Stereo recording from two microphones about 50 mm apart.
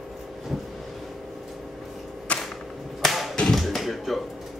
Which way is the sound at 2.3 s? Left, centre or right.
Left.